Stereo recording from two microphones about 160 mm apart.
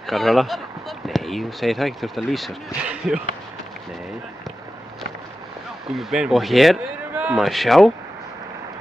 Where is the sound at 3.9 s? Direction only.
Centre (ahead or behind).